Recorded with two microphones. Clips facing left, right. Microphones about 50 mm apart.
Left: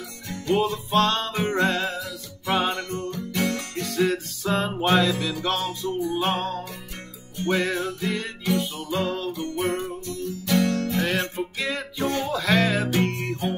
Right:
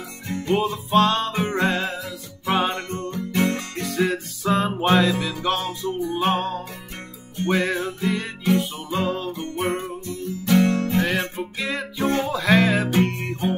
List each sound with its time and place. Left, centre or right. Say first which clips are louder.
0.6 s music: right 3 dB; centre
1.7 s music: right 1 dB; centre
2.0 s music: even; right
3.8 s music: even; centre
8.5 s music: right 4 dB; centre
9.3 s music: right 1 dB; right
11.1 s music: right 1 dB; centre
12.0 s music: right 4 dB; right
12.3 s music: right 3 dB; centre